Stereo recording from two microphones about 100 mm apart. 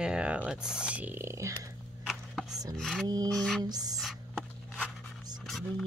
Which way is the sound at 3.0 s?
40° right (ahead or behind).